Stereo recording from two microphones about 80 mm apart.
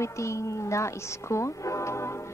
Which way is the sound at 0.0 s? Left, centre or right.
Left.